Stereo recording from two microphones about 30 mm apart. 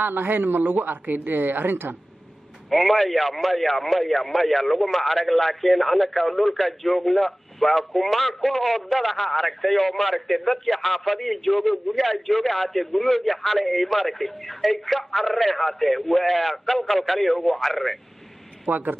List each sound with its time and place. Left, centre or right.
0.0 s speech: right
2.7 s speech: centre
18.7 s speech: right